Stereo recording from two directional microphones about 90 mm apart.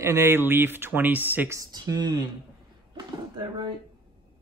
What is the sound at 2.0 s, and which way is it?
Speech, 55° right (ahead or behind).